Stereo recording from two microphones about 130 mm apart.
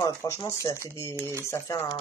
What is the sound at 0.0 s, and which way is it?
Speech, 25° left (ahead or behind).